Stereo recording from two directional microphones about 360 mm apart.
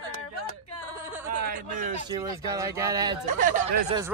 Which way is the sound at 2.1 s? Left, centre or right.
Centre.